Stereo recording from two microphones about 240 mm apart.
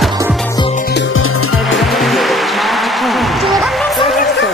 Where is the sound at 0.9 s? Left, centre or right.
Left.